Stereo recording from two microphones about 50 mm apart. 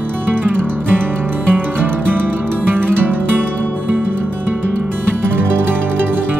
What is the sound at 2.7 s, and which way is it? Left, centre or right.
Music, right.